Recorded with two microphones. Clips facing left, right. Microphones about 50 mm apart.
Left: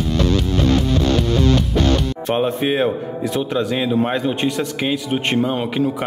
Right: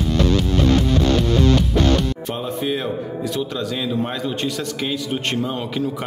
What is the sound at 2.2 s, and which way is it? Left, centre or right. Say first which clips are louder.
A man's voice: left 6 dB; left.